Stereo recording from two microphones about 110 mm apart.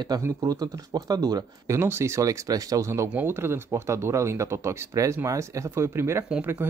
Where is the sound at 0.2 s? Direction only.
35° right (ahead or behind).